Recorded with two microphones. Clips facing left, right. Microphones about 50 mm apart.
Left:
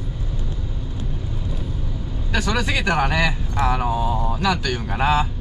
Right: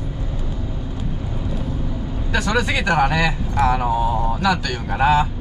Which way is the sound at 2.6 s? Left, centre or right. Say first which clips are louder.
Right 3 dB; centre.